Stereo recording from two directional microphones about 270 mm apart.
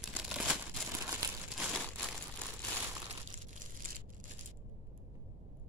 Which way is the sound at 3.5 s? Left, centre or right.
Right.